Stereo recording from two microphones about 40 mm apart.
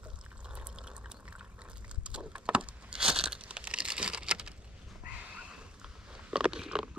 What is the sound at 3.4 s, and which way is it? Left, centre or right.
Computer keyboard, right.